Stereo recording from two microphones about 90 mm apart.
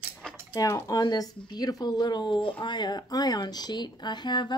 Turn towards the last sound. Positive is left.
turn(degrees=55)  # may be behind; listen again after turning